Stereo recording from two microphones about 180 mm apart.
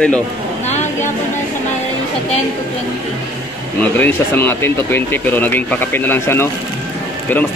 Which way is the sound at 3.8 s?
10° left (ahead or behind).